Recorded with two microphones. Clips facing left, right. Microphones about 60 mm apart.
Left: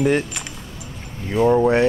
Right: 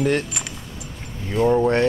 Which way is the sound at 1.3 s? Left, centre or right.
Centre.